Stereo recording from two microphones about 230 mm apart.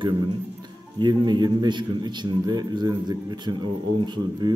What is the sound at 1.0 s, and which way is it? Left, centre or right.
A man's voice, centre.